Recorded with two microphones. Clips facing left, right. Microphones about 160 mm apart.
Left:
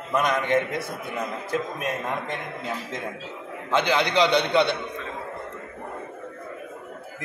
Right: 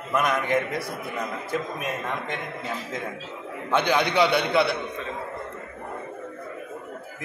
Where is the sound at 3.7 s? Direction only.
10° right (ahead or behind).